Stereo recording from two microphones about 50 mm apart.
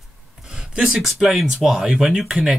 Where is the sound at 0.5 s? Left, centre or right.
Centre.